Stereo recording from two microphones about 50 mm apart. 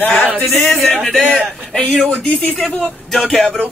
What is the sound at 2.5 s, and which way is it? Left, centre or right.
Speech, centre.